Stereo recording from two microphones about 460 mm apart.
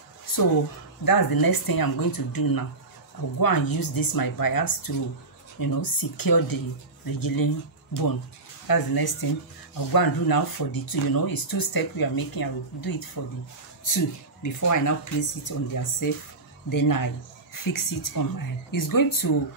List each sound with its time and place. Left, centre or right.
0.3 s a sound: left
1.0 s speech: left
8.6 s speech: left